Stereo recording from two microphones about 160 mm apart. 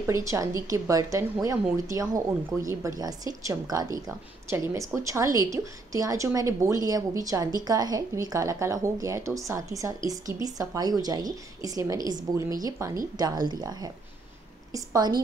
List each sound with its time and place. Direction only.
0.0 s a woman's voice: 20° right (ahead or behind)